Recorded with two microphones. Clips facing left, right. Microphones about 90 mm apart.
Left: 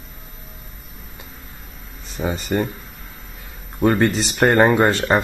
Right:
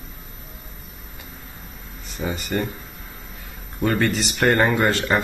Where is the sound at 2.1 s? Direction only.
30° left (ahead or behind).